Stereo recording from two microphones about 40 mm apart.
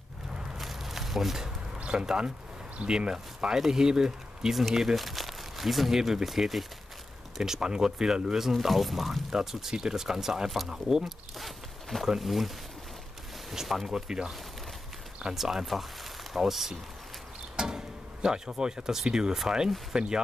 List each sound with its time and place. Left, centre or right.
0.6 s a sound: centre
1.8 s speech: right
8.5 s speech: centre
11.1 s zipper: centre
12.2 s speech: centre
15.3 s speech: centre